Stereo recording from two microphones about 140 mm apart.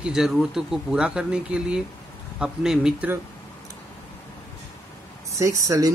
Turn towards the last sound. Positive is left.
turn(degrees=-25)  # may be behind; listen again after turning